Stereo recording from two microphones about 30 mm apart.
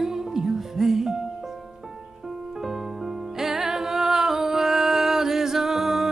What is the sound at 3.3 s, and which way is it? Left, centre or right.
Music, centre.